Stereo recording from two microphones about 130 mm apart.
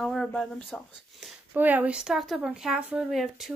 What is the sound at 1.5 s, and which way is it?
A woman's voice, 15° right (ahead or behind).